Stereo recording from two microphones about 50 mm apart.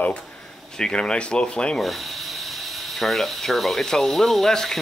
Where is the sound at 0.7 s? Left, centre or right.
Centre.